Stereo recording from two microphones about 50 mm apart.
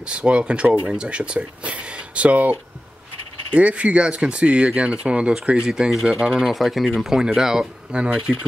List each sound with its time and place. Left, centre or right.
0.0 s speech: right
3.5 s speech: right
5.7 s speech: centre
6.5 s speech: centre; by 8.5 s right